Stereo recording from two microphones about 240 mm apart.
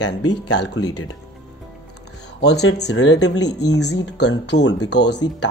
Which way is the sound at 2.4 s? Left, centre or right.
Left.